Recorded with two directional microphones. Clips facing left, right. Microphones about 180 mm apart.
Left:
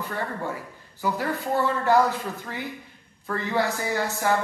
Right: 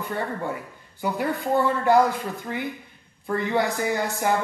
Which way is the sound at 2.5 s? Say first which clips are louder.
Right 4 dB; 20° right (ahead or behind).